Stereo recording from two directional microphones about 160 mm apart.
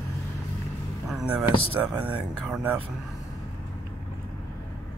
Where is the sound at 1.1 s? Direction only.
5° right (ahead or behind).